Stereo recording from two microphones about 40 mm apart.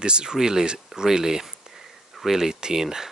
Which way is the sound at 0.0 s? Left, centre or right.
Right.